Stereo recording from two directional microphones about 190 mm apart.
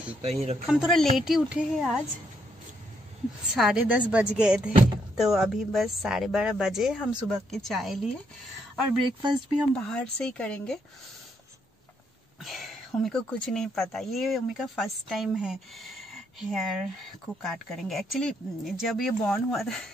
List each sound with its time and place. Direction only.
0.2 s speech: 35° right (ahead or behind)
0.7 s speech: centre (ahead or behind)
3.5 s speech: 5° right (ahead or behind)
9.0 s speech: 25° right (ahead or behind)
9.8 s speech: 5° left (ahead or behind)
12.4 s speech: centre (ahead or behind)